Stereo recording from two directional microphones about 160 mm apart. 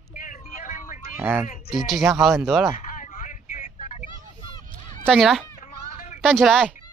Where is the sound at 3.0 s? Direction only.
55° left (ahead or behind).